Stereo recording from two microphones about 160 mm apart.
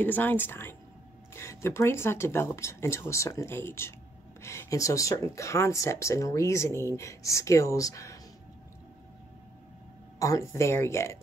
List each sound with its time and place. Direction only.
0.0 s speech: 10° left (ahead or behind)
10.1 s speech: 20° left (ahead or behind)